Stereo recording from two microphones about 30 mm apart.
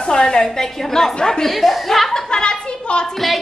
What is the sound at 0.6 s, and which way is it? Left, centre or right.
Speech, centre.